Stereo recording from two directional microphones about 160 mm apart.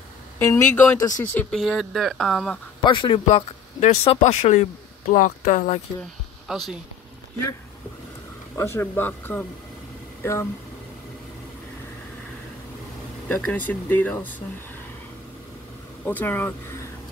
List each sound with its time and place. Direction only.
0.4 s speech: 15° left (ahead or behind)
1.2 s speech: 10° left (ahead or behind)
1.6 s speech: centre (ahead or behind)
2.8 s a man's voice: 30° left (ahead or behind); by 5.8 s 50° left (ahead or behind)
6.4 s speech: centre (ahead or behind)
8.5 s speech: 15° left (ahead or behind)
13.3 s speech: 10° left (ahead or behind)
16.1 s speech: 10° left (ahead or behind)